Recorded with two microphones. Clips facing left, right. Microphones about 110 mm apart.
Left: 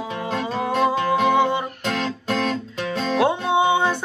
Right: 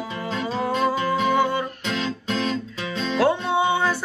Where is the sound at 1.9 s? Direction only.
50° left (ahead or behind).